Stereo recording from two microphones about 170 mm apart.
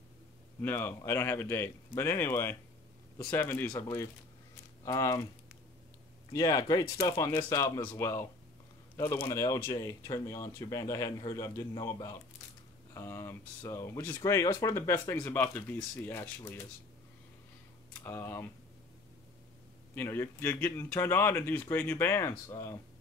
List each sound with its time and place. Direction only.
0.6 s speech: 10° left (ahead or behind)
6.3 s speech: 20° left (ahead or behind)
18.0 s speech: 15° left (ahead or behind)
20.0 s speech: 15° left (ahead or behind)